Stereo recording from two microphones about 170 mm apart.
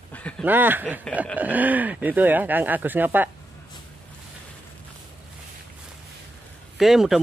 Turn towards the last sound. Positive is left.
turn(degrees=0)  # may be behind; listen again after turning